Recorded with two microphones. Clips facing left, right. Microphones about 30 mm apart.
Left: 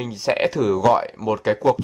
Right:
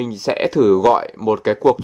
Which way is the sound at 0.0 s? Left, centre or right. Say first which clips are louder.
Right 2 dB; centre.